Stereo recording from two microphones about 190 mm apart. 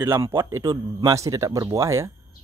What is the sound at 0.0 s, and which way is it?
Speech, 15° right (ahead or behind).